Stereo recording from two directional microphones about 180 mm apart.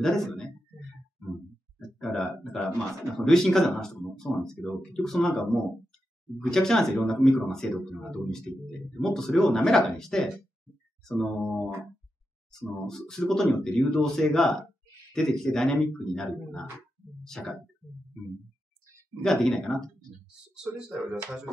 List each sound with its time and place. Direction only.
0.0 s speech: 5° left (ahead or behind)
2.0 s speech: centre (ahead or behind)
12.8 s speech: 5° left (ahead or behind)
19.2 s speech: 5° left (ahead or behind)